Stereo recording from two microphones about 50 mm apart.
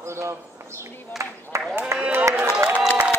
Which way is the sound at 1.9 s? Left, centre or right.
Right.